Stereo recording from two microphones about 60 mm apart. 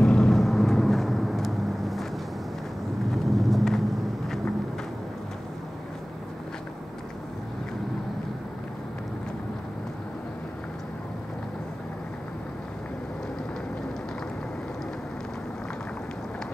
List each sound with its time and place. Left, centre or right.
0.0 s vehicle: centre
3.1 s vehicle: centre